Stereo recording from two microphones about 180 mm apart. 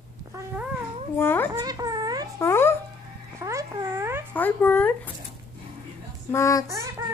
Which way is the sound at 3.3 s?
15° right (ahead or behind).